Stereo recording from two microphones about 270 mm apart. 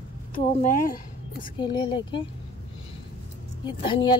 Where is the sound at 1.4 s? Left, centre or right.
Centre.